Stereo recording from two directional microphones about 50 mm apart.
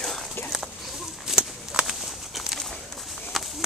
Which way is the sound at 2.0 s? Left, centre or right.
Centre.